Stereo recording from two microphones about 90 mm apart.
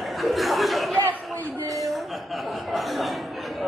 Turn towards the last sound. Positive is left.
turn(degrees=0)  # may be behind; listen again after turning